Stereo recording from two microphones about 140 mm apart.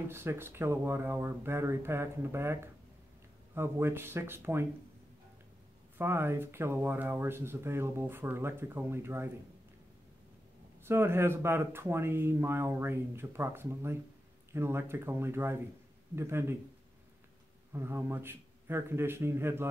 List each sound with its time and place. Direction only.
0.1 s speech: 15° right (ahead or behind)
5.9 s speech: 15° right (ahead or behind)
10.8 s speech: 15° right (ahead or behind)
17.7 s speech: 15° right (ahead or behind)